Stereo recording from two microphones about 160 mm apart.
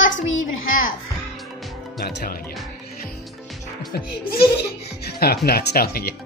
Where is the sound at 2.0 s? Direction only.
85° left.